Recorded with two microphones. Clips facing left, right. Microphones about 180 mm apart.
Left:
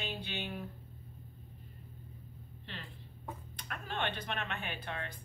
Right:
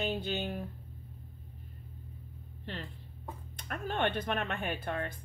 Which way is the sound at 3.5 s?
45° right (ahead or behind).